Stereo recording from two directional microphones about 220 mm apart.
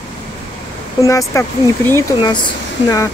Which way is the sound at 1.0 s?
15° left (ahead or behind).